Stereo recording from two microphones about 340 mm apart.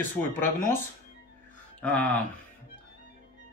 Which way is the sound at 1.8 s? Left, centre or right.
Centre.